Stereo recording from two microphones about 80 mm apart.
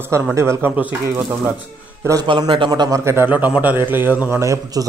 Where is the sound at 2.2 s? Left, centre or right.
Right.